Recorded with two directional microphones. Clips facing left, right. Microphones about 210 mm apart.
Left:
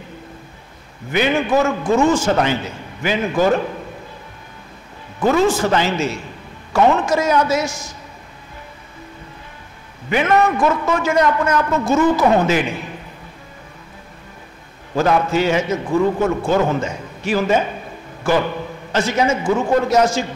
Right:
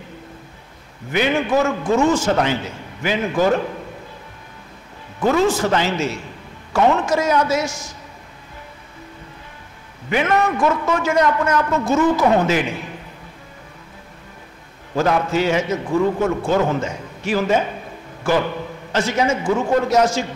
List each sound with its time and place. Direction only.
1.1 s a man's voice: 10° left (ahead or behind)
1.5 s a man's voice: 20° left (ahead or behind)
5.3 s a man's voice: 15° left (ahead or behind)
10.1 s a man's voice: 15° left (ahead or behind)
15.0 s a man's voice: 20° left (ahead or behind)
18.3 s a man's voice: 15° left (ahead or behind)
19.4 s a man's voice: 25° left (ahead or behind)